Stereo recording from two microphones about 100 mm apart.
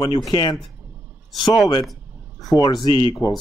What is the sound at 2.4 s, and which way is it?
Speech, 40° left (ahead or behind).